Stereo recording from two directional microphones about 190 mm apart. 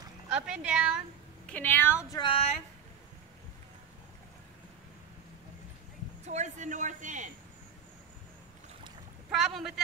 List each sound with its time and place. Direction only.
0.3 s speech: 5° right (ahead or behind)
1.5 s speech: 10° left (ahead or behind)
2.0 s speech: 25° left (ahead or behind)
6.2 s a man's voice: 40° right (ahead or behind)
9.3 s a man's voice: centre (ahead or behind)